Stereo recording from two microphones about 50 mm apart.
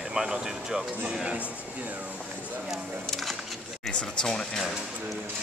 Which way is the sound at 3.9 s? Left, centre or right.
Centre.